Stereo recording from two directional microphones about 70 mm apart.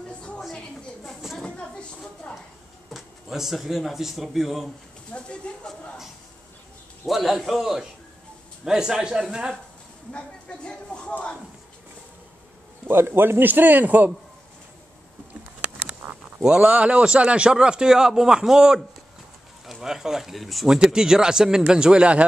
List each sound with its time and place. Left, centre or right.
1.0 s a sound: centre
1.4 s a sound: centre
2.9 s speech: centre
5.1 s speech: centre
7.1 s a man's voice: centre
10.1 s speech: centre
12.8 s a man's voice: right
16.0 s a sound: right
16.4 s speech: centre